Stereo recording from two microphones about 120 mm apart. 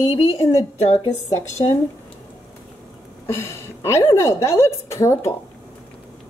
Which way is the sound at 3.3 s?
25° left (ahead or behind).